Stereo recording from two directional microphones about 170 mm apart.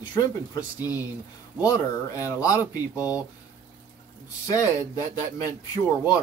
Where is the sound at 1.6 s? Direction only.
20° left (ahead or behind).